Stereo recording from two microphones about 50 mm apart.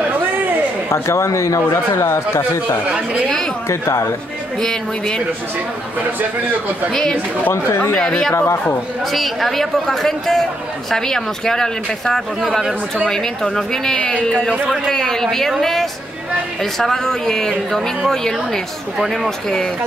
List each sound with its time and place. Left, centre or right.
0.8 s a man's voice: left
4.6 s speech: centre
6.9 s speech: centre
7.5 s speech: left
8.0 s speech: centre
9.1 s speech: centre